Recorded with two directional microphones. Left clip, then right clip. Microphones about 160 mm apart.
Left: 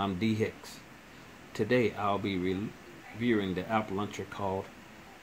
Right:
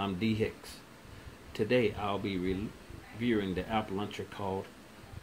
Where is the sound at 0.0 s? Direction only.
20° left (ahead or behind).